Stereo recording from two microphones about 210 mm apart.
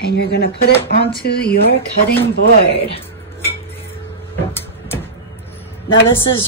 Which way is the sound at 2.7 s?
25° left (ahead or behind).